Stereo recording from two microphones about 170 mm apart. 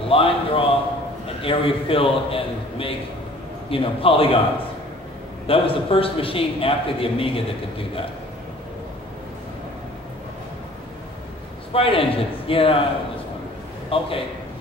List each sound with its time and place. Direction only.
0.1 s a man's voice: 35° left (ahead or behind)
5.5 s a man's voice: 35° left (ahead or behind)
11.7 s a man's voice: 35° left (ahead or behind)
13.8 s a man's voice: 35° left (ahead or behind)